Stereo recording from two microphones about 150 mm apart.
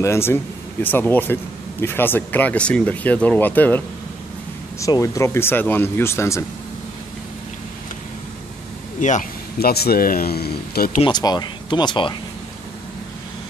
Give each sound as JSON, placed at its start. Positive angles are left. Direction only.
{"t": 0.0, "sound": "speech", "side_deg": 15}
{"t": 9.6, "sound": "speech", "side_deg": 90}
{"t": 11.1, "sound": "speech", "side_deg": 30}